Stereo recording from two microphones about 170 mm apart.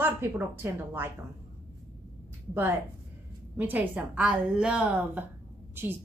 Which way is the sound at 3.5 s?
10° right (ahead or behind).